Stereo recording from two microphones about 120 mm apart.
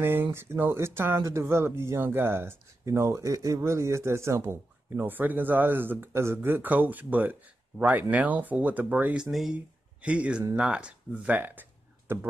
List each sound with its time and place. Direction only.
0.0 s speech: 20° right (ahead or behind)